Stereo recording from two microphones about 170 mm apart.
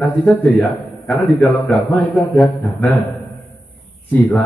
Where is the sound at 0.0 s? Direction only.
10° left (ahead or behind).